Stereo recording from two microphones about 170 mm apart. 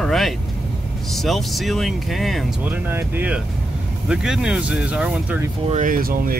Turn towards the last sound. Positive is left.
turn(degrees=-60)  # may be behind; listen again after turning